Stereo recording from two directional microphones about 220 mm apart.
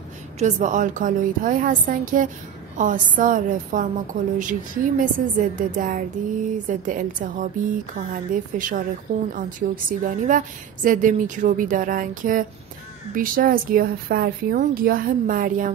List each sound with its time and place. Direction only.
0.4 s a woman's voice: 35° right (ahead or behind)